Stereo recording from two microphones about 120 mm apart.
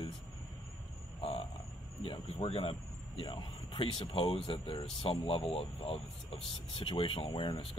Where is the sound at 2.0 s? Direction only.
50° left (ahead or behind).